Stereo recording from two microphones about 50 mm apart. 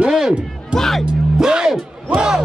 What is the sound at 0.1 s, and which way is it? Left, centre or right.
Music, centre.